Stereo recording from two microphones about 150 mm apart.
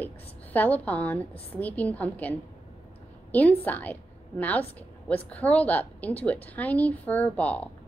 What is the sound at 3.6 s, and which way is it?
A woman's voice, 10° left (ahead or behind).